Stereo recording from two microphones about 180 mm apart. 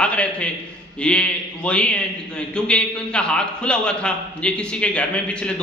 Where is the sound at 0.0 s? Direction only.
5° left (ahead or behind).